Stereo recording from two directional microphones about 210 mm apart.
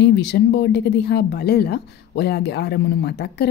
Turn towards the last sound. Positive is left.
turn(degrees=50)  # may be behind; listen again after turning